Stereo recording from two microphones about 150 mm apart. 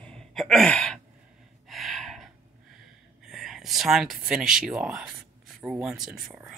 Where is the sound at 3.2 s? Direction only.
Centre (ahead or behind).